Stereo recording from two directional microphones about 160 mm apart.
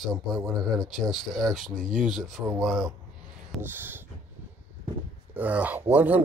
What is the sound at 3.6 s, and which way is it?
Speech, 15° right (ahead or behind).